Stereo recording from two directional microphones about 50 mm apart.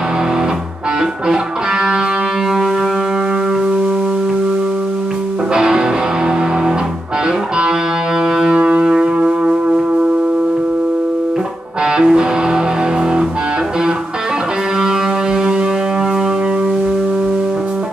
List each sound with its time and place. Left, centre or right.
1.3 s music: right
5.5 s music: centre
8.2 s music: centre
11.8 s music: centre
14.8 s music: centre